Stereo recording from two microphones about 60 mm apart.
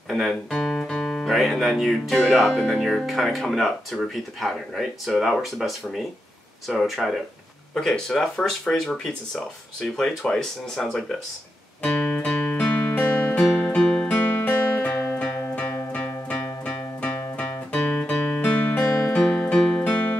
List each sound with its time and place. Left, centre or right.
0.1 s speech: centre
11.8 s music: centre
13.4 s music: centre
13.7 s music: centre
14.0 s music: left; by 19.8 s centre
19.8 s music: left